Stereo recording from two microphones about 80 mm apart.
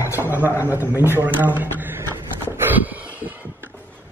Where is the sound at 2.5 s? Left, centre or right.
Right.